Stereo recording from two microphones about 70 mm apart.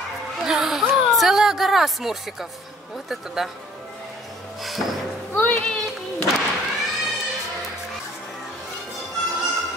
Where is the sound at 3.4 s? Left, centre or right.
Centre.